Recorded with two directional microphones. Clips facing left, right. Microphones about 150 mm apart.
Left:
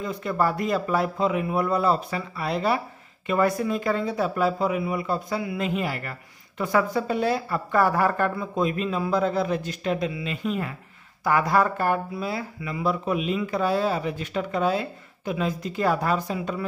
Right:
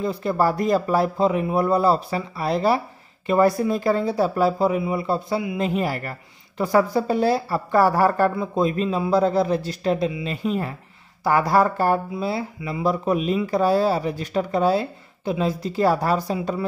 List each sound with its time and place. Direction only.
0.0 s speech: 30° right (ahead or behind)
5.6 s speech: 40° right (ahead or behind)